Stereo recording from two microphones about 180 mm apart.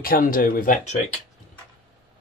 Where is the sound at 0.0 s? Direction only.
50° left (ahead or behind).